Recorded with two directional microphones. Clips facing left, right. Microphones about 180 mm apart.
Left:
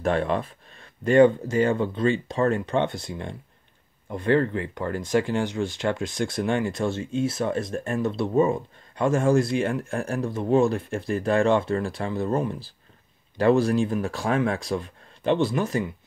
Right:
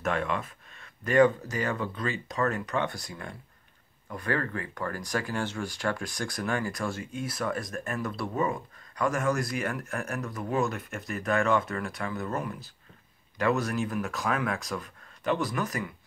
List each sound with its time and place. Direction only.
0.0 s speech: 35° left (ahead or behind)